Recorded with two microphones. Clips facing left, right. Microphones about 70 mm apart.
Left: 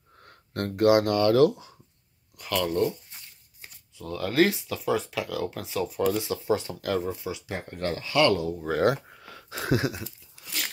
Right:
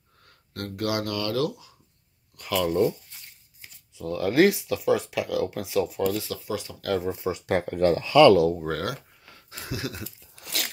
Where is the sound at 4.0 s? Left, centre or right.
Centre.